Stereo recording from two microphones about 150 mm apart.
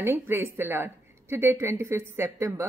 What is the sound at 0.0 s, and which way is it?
Speech, 15° right (ahead or behind).